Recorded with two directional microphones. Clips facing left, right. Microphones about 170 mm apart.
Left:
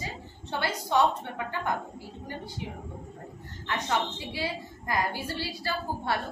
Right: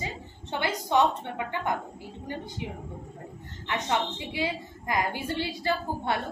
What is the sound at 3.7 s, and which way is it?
A woman's voice, 20° right (ahead or behind).